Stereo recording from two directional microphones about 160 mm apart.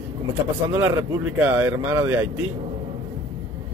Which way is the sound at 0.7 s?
15° right (ahead or behind).